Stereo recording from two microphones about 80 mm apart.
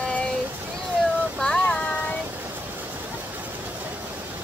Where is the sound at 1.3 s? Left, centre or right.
Centre.